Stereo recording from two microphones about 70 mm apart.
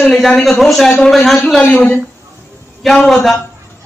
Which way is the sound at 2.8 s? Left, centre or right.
Centre.